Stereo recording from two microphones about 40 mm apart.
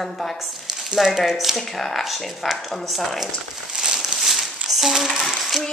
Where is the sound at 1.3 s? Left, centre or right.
Centre.